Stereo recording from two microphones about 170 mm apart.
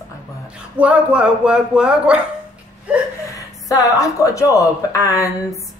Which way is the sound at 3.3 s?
20° left (ahead or behind).